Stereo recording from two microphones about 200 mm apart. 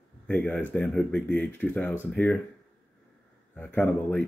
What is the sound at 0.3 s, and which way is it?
Speech, 5° left (ahead or behind).